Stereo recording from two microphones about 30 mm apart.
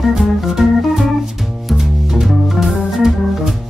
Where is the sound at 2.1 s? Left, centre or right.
Centre.